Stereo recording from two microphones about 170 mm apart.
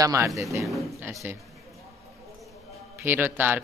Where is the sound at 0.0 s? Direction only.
20° right (ahead or behind).